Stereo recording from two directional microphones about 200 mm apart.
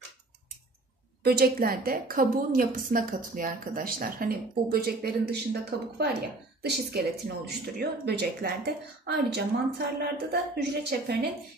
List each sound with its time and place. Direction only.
1.2 s a woman's voice: 50° right (ahead or behind)